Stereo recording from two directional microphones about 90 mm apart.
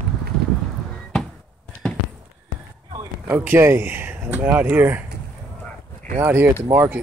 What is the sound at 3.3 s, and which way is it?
Speech, 25° right (ahead or behind).